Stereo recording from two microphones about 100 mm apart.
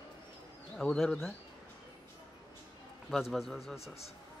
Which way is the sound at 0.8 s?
10° left (ahead or behind).